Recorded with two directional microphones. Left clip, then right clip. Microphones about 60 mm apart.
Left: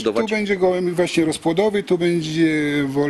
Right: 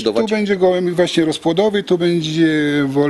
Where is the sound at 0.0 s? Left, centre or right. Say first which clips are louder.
Right 3 dB; right.